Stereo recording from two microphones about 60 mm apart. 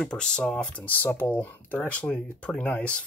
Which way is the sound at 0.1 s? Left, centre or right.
Centre.